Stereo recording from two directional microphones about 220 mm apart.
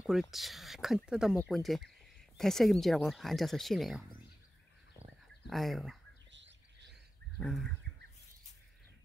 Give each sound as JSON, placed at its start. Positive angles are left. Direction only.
{"t": 0.0, "sound": "speech", "side_deg": 0}
{"t": 5.5, "sound": "speech", "side_deg": 0}
{"t": 6.3, "sound": "bird", "side_deg": -55}
{"t": 7.3, "sound": "bird", "side_deg": 0}